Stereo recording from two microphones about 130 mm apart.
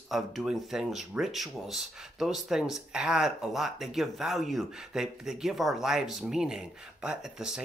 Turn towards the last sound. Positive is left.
turn(degrees=-5)  # may be behind; listen again after turning